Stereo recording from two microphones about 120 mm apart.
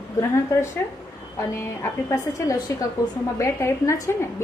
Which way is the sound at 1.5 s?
20° left (ahead or behind).